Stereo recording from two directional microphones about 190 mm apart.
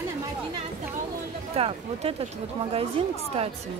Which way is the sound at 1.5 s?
30° right (ahead or behind).